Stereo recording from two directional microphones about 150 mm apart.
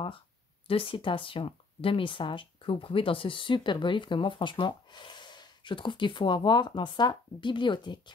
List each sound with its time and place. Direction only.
0.7 s speech: 35° left (ahead or behind)